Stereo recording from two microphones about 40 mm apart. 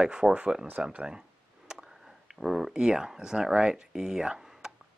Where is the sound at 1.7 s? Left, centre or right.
Right.